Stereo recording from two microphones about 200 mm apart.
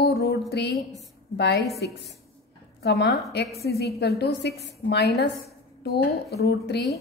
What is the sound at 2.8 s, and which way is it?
A woman's voice, 55° left (ahead or behind).